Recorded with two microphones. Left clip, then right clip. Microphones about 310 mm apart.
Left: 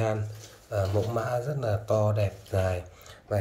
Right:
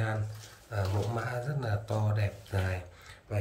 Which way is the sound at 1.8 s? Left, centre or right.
Centre.